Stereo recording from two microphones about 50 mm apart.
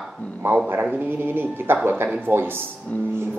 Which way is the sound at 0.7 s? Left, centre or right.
Right.